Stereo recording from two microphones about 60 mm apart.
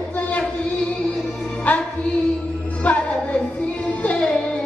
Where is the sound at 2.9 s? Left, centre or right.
Centre.